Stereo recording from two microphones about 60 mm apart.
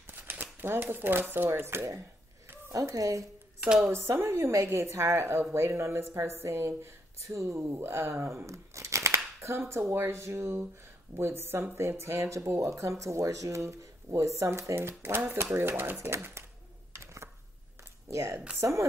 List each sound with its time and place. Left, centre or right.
0.0 s shuffling cards: right
1.3 s speech: right
2.7 s speech: right
3.8 s speech: right
4.1 s a woman's voice: right
14.8 s speech: right
17.0 s a sound: right
18.0 s speech: right